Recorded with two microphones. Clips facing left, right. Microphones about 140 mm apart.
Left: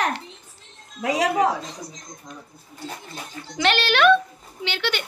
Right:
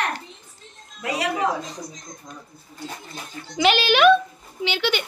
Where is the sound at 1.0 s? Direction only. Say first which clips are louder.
Left 4 dB; 90° left.